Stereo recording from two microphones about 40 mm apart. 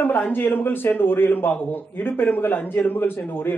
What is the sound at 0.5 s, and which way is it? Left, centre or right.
A man's voice, left.